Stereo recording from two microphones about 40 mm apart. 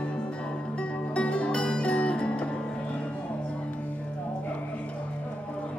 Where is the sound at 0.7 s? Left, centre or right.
Left.